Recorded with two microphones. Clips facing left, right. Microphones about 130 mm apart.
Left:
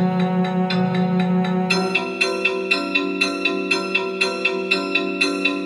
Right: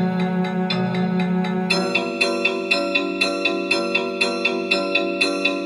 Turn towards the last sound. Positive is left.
turn(degrees=-35)  # may be behind; listen again after turning